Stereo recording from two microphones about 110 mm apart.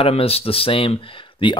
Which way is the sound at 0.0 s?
65° left (ahead or behind).